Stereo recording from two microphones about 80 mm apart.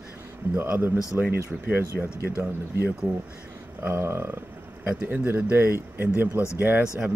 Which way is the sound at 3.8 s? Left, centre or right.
Right.